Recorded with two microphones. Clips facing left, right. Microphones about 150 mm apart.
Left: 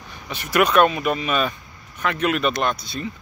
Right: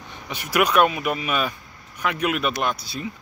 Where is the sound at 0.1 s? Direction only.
10° right (ahead or behind).